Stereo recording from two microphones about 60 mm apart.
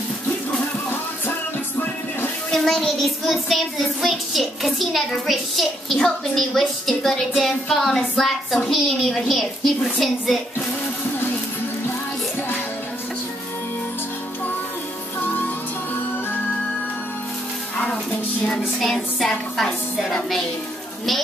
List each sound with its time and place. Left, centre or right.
2.5 s child singing: centre
15.1 s music: left
18.8 s child singing: centre